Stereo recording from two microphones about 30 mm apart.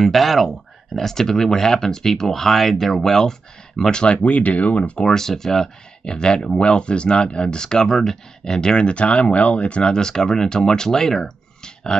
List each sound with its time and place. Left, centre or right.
0.0 s speech: centre
4.2 s speech: left
5.0 s speech: centre
6.0 s speech: left
8.5 s speech: left
9.9 s speech: left